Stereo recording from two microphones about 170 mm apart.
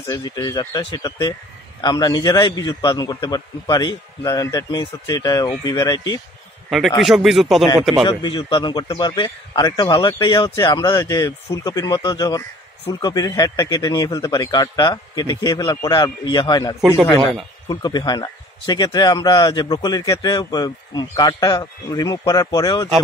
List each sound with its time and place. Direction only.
0.0 s speech: 25° left (ahead or behind)
7.0 s speech: centre (ahead or behind)
8.1 s speech: 30° left (ahead or behind)